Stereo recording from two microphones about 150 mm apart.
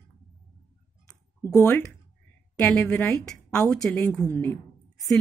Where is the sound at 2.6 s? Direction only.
5° left (ahead or behind).